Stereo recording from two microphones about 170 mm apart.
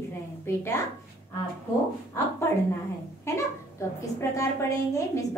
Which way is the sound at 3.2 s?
15° left (ahead or behind).